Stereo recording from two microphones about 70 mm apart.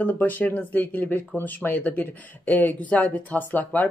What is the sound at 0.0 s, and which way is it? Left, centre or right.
Speech, left.